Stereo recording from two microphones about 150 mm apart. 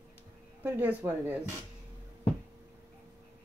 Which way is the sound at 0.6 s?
10° right (ahead or behind).